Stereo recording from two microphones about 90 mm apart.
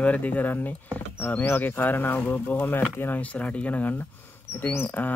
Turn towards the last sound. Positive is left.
turn(degrees=20)  # may be behind; listen again after turning